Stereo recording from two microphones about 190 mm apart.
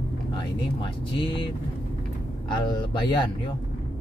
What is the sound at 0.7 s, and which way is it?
Speech, 25° left (ahead or behind).